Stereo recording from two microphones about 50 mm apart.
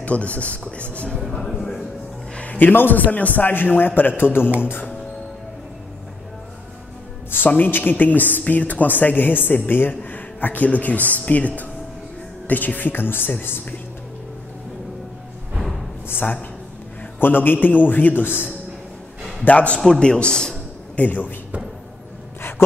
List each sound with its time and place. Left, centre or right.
0.0 s speech: left
1.2 s a man's voice: centre
2.3 s a man's voice: left
7.2 s a man's voice: left
16.1 s a man's voice: left
19.4 s speech: left
19.8 s a man's voice: centre
20.9 s a man's voice: left